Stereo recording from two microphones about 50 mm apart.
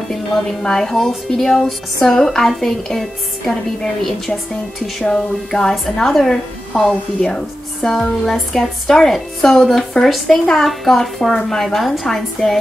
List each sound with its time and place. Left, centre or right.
0.1 s a woman's voice: centre